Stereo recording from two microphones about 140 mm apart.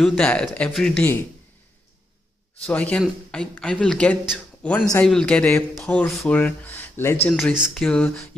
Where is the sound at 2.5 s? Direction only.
10° left (ahead or behind).